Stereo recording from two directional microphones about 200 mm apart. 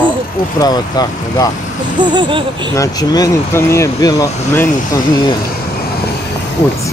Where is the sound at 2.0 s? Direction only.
20° right (ahead or behind).